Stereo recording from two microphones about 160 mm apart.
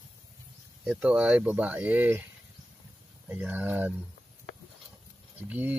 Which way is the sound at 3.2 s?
10° right (ahead or behind).